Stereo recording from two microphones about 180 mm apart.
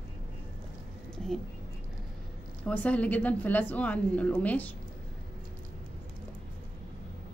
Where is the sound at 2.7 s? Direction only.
5° left (ahead or behind).